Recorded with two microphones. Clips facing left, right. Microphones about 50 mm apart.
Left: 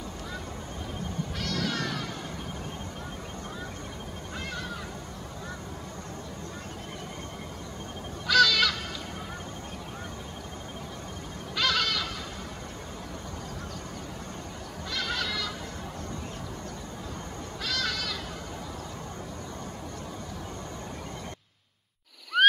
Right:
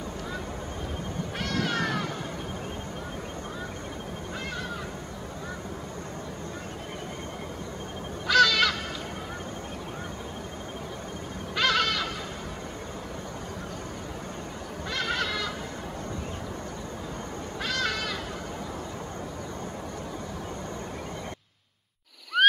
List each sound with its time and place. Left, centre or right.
1.4 s cat: right
8.3 s honk: centre
11.5 s goat: centre
14.9 s goat: right
17.6 s sheep: right
22.3 s a sound: centre